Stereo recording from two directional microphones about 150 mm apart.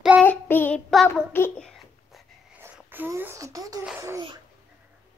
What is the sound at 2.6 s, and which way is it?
A woman's voice, 15° right (ahead or behind).